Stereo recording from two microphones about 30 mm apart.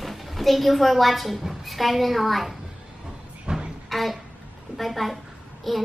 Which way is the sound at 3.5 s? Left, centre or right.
Right.